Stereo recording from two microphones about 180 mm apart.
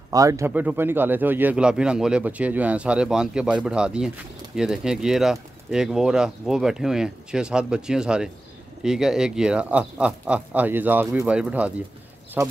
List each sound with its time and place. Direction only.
0.1 s speech: 20° right (ahead or behind)